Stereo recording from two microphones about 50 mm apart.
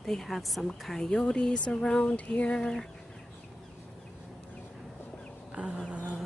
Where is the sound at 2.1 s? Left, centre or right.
Left.